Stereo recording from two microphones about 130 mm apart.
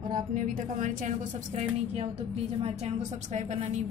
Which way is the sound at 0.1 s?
90° right.